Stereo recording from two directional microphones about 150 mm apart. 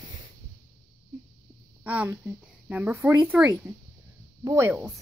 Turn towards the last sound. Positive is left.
turn(degrees=-20)  # may be behind; listen again after turning